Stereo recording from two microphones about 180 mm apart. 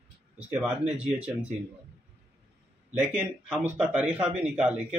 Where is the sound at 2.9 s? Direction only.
5° right (ahead or behind).